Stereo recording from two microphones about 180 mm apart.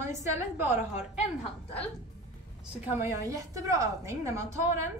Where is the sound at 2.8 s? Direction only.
15° right (ahead or behind).